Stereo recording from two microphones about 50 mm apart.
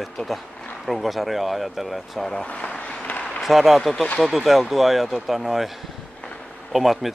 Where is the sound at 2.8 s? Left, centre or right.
Left.